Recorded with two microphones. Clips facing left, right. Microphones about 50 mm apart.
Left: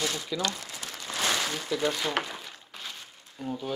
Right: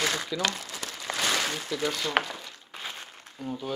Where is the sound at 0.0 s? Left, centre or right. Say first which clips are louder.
Right 2 dB; right.